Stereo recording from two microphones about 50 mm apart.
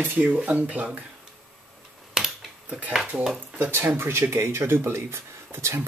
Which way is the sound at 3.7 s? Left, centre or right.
Right.